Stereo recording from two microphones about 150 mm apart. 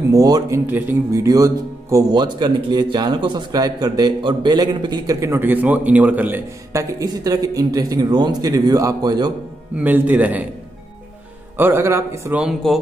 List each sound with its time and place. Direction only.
0.1 s speech: 25° right (ahead or behind)
0.7 s speech: 10° right (ahead or behind)
9.8 s a man's voice: 10° right (ahead or behind)
11.5 s a man's voice: 15° right (ahead or behind)
12.4 s speech: 5° right (ahead or behind)